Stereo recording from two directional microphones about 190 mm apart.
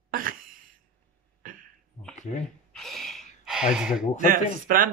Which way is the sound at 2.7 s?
Centre (ahead or behind).